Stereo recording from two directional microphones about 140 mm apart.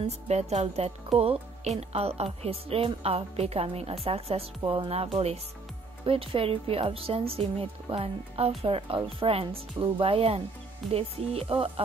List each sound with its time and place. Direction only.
0.0 s speech: 50° right (ahead or behind)